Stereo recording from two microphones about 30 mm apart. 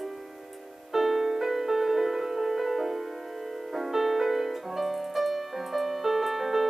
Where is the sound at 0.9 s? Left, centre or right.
Centre.